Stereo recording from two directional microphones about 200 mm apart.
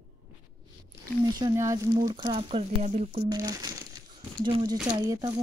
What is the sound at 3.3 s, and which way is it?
Crumpling, 20° right (ahead or behind).